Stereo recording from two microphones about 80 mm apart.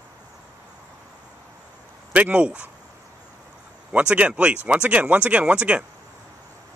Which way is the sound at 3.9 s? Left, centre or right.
Centre.